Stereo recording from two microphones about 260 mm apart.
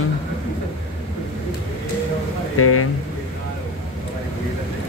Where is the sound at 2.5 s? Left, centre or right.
Left.